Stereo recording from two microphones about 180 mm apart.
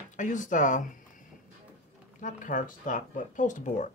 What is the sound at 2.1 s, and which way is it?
Speech, 45° left (ahead or behind).